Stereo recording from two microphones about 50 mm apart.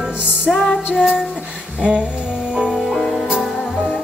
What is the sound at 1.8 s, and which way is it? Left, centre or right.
Music, right.